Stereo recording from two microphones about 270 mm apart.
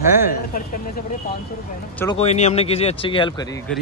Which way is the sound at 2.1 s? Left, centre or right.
Left.